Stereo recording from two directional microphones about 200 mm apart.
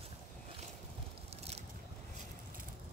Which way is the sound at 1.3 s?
30° right (ahead or behind).